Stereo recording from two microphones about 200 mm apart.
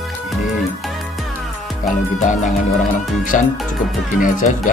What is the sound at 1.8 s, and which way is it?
Speech, 40° left (ahead or behind).